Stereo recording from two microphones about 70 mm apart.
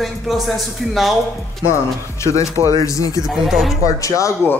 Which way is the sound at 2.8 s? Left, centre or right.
Left.